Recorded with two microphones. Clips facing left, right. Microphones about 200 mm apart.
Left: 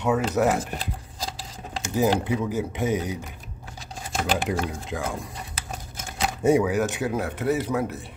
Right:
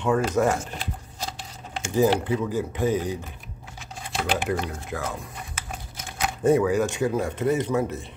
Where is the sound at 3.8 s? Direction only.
40° left (ahead or behind).